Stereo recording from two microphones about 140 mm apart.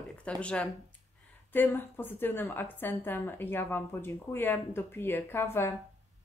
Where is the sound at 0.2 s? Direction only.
10° left (ahead or behind).